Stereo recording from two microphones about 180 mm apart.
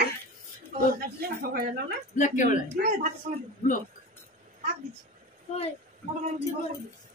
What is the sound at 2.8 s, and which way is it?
Speech, 55° right (ahead or behind).